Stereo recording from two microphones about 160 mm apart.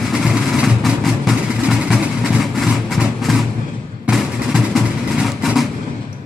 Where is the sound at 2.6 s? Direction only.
Centre (ahead or behind).